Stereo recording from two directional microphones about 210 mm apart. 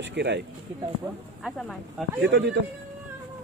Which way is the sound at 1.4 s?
Centre (ahead or behind).